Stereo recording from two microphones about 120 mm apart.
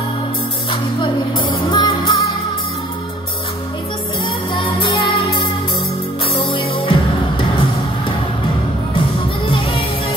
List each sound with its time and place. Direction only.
0.7 s music: 45° left (ahead or behind)
4.6 s music: 45° left (ahead or behind)
9.5 s music: 45° left (ahead or behind)